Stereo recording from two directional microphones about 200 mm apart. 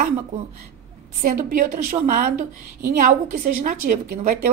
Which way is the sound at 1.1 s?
40° right (ahead or behind).